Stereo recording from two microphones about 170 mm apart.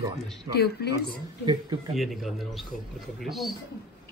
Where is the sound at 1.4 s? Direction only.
25° right (ahead or behind).